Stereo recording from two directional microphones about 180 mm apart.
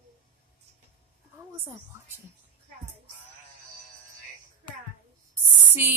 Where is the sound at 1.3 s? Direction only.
15° right (ahead or behind).